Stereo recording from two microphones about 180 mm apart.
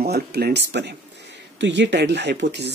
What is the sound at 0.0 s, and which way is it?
Speech, 60° right (ahead or behind).